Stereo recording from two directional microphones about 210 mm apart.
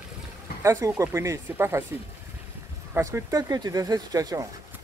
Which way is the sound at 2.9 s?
15° right (ahead or behind).